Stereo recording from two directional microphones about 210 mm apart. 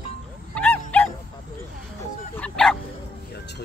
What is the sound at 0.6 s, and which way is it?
Dog, 10° left (ahead or behind).